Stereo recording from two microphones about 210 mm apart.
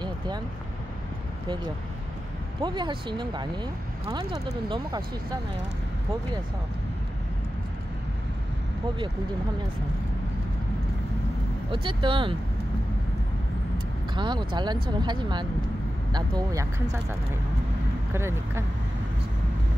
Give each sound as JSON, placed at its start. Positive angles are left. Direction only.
{"t": 2.6, "sound": "speech", "side_deg": -20}
{"t": 11.7, "sound": "speech", "side_deg": -25}
{"t": 14.1, "sound": "speech", "side_deg": -20}
{"t": 18.1, "sound": "speech", "side_deg": -10}